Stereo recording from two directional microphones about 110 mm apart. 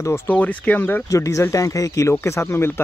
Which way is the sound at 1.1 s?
30° left (ahead or behind).